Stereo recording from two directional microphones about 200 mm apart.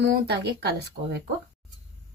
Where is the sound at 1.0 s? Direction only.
40° right (ahead or behind).